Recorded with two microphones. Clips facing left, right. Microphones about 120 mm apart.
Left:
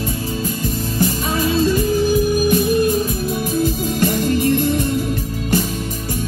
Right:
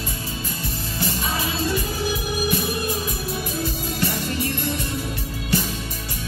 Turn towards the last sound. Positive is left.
turn(degrees=50)  # may be behind; listen again after turning